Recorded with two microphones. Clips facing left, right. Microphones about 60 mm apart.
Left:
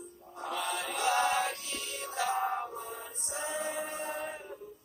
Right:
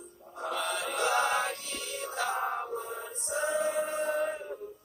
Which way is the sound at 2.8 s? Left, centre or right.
Right.